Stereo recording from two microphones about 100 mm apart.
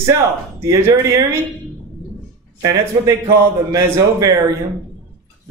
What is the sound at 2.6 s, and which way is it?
A man's voice, 35° right (ahead or behind).